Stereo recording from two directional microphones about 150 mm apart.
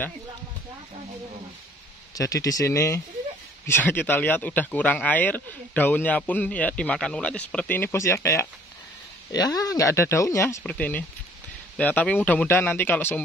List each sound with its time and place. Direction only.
2.1 s speech: 25° left (ahead or behind)
10.6 s speech: 10° left (ahead or behind)